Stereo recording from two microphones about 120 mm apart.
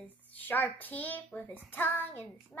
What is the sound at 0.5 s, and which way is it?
A woman's voice, 15° left (ahead or behind).